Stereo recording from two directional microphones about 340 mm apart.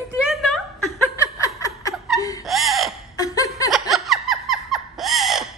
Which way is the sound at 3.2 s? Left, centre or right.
Centre.